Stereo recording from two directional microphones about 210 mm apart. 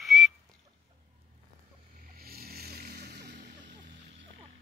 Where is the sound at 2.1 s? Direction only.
45° right (ahead or behind).